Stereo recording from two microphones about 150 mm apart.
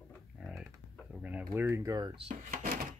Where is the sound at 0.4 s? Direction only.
5° right (ahead or behind).